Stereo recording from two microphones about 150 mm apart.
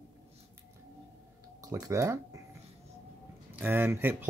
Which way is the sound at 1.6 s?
20° right (ahead or behind).